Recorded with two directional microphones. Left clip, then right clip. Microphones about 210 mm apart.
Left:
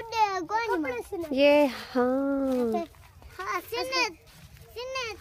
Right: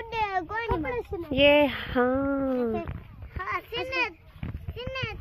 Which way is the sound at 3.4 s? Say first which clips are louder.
Even; 60° left (ahead or behind).